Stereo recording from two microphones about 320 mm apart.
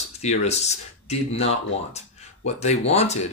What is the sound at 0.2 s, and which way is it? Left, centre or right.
Speech, left.